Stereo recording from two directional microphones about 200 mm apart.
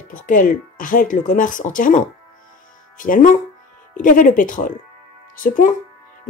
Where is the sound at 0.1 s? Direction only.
40° left (ahead or behind).